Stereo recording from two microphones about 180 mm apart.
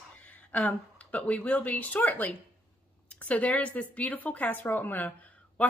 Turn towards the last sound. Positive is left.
turn(degrees=10)  # may be behind; listen again after turning